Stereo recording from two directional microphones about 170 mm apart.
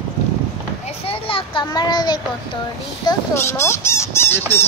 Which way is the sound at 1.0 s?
30° left (ahead or behind).